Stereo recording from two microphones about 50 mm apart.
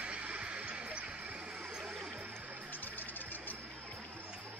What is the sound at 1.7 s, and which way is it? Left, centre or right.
Music, centre.